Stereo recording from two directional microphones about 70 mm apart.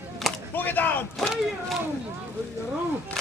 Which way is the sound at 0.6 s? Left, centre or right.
Left.